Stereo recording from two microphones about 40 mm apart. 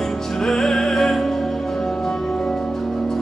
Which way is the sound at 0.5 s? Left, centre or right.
Centre.